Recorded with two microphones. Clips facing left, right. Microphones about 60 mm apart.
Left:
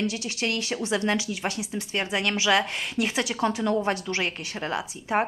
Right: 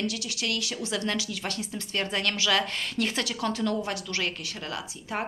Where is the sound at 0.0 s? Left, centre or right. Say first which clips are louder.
Left 3 dB; left.